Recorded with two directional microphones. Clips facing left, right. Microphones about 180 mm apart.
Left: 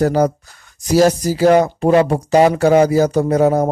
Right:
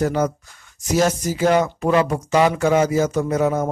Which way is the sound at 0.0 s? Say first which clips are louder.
Left 5 dB; 35° left (ahead or behind).